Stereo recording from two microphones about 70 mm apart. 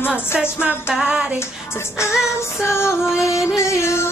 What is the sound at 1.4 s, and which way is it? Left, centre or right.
Female singing, left.